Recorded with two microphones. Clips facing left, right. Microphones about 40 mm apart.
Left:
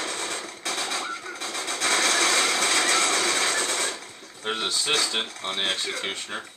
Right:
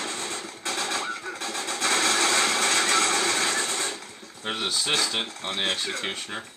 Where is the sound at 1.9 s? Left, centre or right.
Right.